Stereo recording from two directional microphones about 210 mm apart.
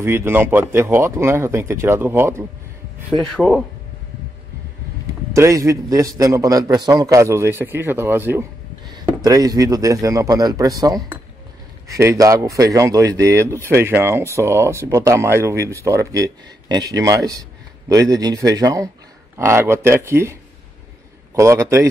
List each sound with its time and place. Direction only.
0.0 s speech: 10° right (ahead or behind)
3.1 s speech: centre (ahead or behind)
5.3 s a man's voice: 15° right (ahead or behind)
21.4 s speech: 15° right (ahead or behind)